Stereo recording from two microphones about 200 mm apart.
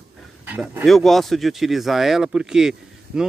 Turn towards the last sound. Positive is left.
turn(degrees=-5)  # may be behind; listen again after turning